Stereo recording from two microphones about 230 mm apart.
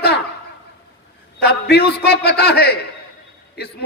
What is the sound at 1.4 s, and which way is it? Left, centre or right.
A man's voice, left.